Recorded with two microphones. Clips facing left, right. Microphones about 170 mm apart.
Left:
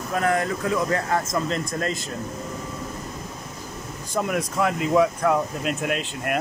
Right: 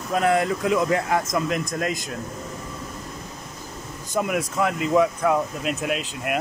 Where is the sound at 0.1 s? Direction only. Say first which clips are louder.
Right 3 dB; 20° right (ahead or behind).